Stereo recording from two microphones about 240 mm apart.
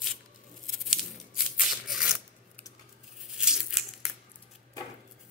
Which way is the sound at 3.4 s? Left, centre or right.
Centre.